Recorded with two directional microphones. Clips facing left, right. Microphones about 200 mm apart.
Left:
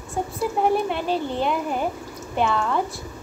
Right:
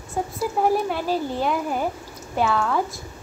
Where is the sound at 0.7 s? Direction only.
5° right (ahead or behind).